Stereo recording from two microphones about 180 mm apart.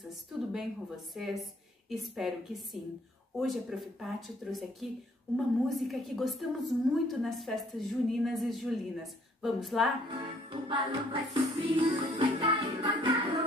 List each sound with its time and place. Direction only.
0.0 s a woman's voice: centre (ahead or behind)
10.1 s music: 30° right (ahead or behind)